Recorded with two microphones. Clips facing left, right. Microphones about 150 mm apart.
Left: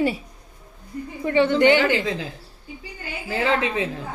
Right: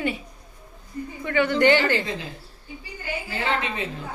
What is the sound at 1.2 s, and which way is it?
Speech, 30° left (ahead or behind).